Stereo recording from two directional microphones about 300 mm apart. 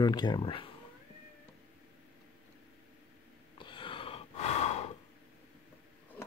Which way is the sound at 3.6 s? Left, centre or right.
Centre.